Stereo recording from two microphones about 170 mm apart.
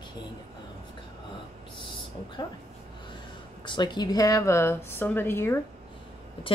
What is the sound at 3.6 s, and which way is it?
A woman's voice, 25° left (ahead or behind).